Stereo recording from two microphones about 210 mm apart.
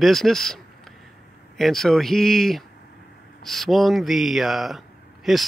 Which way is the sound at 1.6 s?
Centre (ahead or behind).